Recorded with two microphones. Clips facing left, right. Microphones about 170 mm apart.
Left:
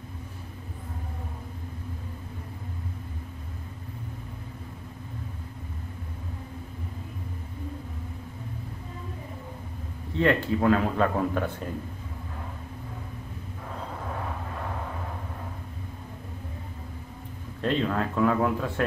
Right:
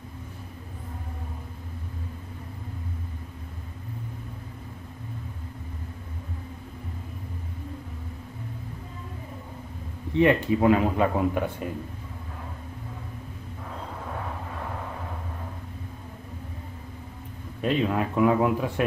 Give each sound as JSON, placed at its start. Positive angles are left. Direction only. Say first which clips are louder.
{"t": 10.1, "sound": "speech", "louder": "right 3 dB", "side_deg": -15}
{"t": 17.6, "sound": "speech", "louder": "right 2 dB", "side_deg": -10}